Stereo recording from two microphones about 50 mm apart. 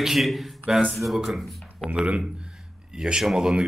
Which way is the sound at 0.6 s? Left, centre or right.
Centre.